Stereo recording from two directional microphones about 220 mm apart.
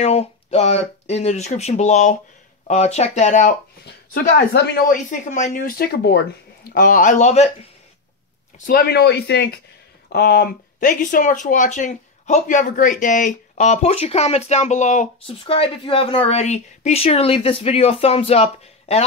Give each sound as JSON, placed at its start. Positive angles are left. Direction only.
{"t": 0.0, "sound": "speech", "side_deg": 30}
{"t": 8.6, "sound": "speech", "side_deg": 45}